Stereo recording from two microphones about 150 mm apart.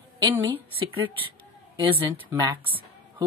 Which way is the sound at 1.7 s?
35° right (ahead or behind).